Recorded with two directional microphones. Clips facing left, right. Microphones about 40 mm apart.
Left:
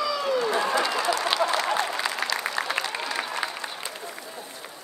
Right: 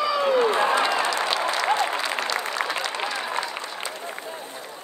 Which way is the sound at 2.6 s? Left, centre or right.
Right.